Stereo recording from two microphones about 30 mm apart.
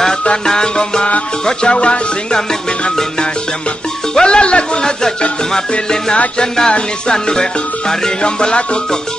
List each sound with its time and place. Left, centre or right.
0.5 s music: left
4.1 s music: left
5.5 s music: left